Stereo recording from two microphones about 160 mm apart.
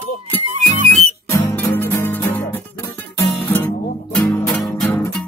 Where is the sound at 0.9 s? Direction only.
15° left (ahead or behind).